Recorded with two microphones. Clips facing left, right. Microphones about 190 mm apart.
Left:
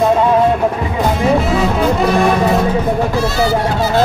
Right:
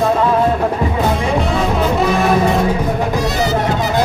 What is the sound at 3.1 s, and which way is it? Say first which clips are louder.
Music: left 2 dB; 15° right (ahead or behind).